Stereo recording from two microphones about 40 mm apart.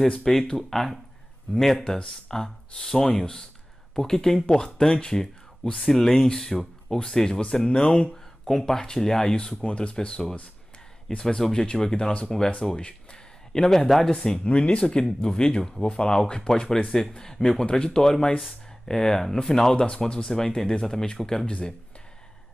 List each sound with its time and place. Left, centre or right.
0.2 s speech: centre
8.5 s speech: centre
9.3 s speech: left
9.9 s speech: centre
12.1 s speech: left
12.6 s a sound: left
13.8 s speech: centre
14.4 s speech: left; by 21.5 s centre
21.5 s speech: left